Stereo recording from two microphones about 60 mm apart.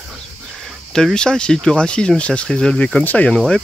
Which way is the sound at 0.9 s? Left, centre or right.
Centre.